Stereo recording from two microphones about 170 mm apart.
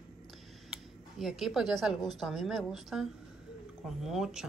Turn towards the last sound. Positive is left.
turn(degrees=-5)  # may be behind; listen again after turning